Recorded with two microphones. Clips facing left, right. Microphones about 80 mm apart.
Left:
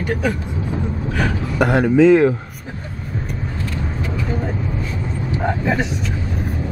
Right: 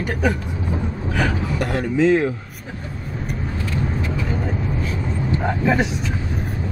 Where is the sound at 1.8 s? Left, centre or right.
Left.